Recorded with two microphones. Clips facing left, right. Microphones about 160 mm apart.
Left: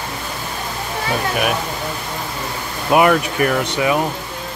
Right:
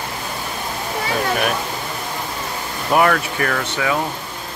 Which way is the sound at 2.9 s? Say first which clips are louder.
Left 3 dB; 15° left (ahead or behind).